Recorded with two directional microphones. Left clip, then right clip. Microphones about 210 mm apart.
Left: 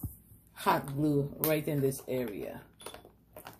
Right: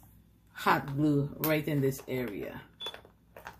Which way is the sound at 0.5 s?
15° right (ahead or behind).